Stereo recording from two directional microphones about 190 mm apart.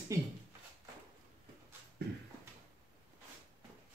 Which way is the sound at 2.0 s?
60° right (ahead or behind).